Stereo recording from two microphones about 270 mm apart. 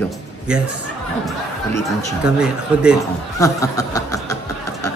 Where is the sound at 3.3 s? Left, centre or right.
Centre.